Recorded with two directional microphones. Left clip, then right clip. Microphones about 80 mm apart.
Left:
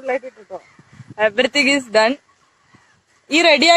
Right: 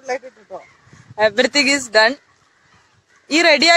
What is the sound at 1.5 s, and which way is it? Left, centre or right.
Speech, centre.